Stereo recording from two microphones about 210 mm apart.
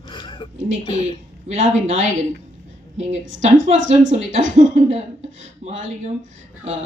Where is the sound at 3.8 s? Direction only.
35° right (ahead or behind).